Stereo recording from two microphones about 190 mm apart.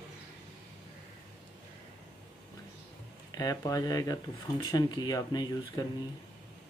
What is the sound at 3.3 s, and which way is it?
Speech, 20° left (ahead or behind).